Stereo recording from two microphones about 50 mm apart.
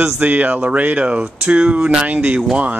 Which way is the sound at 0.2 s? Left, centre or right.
Right.